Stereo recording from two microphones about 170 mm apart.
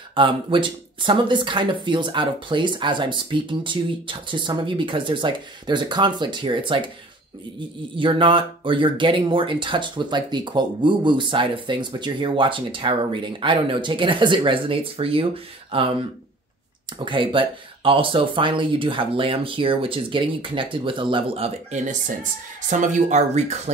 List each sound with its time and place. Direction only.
0.1 s speech: 30° right (ahead or behind)
7.9 s speech: 30° right (ahead or behind)